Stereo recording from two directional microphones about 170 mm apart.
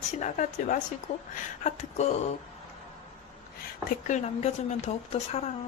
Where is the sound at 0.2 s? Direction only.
50° left (ahead or behind).